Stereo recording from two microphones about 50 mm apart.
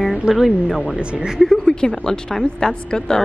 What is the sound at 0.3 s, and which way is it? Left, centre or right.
Speech, centre.